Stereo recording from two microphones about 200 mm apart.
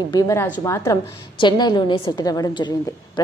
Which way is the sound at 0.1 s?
15° left (ahead or behind).